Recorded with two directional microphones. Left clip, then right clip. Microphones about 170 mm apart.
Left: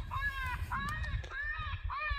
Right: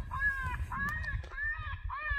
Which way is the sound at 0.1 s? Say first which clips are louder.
Right 4 dB; 30° left (ahead or behind).